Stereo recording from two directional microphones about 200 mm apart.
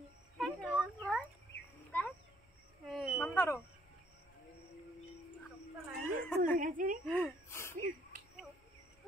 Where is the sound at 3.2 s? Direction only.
10° left (ahead or behind).